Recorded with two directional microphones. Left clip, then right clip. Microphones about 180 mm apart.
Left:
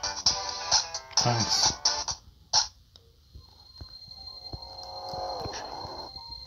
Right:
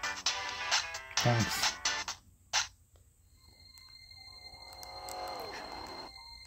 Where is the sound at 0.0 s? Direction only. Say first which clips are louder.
Left 6 dB; 40° right (ahead or behind).